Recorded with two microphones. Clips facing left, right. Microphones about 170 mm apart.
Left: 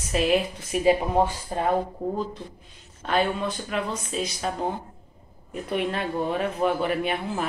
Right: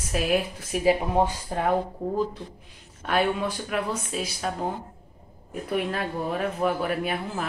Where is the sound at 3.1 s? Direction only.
10° right (ahead or behind).